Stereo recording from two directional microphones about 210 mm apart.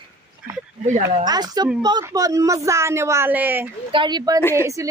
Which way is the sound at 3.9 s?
20° right (ahead or behind).